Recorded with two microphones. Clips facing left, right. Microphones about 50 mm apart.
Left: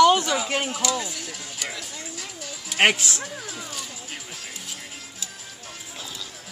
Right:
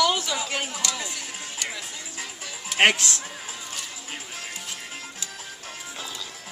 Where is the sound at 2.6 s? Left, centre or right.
Centre.